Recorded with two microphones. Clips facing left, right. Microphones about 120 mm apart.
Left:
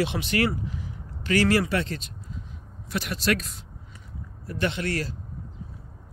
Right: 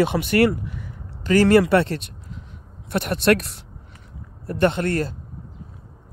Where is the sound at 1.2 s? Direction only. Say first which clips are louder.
Right 7 dB; 45° right (ahead or behind); by 3.6 s 65° right (ahead or behind).